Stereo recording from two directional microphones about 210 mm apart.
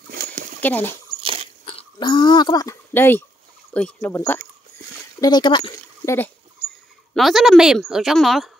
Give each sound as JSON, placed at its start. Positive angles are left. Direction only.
{"t": 0.1, "sound": "a sound", "side_deg": -40}
{"t": 0.6, "sound": "speech", "side_deg": 10}
{"t": 1.2, "sound": "biting", "side_deg": -25}
{"t": 1.7, "sound": "a woman's voice", "side_deg": 25}
{"t": 5.2, "sound": "speech", "side_deg": 20}
{"t": 7.2, "sound": "a woman's voice", "side_deg": 0}